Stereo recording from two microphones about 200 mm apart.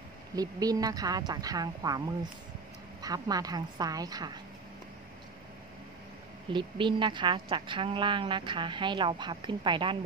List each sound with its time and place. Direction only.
0.4 s a woman's voice: 20° right (ahead or behind)
6.5 s a woman's voice: 25° right (ahead or behind)